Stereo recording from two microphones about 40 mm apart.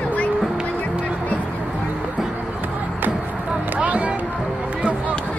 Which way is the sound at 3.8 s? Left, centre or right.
Right.